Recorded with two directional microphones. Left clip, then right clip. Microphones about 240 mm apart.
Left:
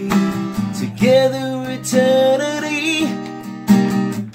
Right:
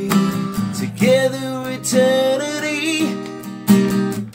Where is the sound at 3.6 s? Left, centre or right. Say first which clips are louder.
Even; right.